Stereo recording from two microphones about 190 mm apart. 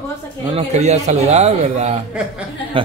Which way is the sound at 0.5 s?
35° right (ahead or behind).